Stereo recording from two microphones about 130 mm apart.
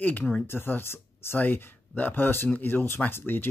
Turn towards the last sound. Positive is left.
turn(degrees=15)  # may be behind; listen again after turning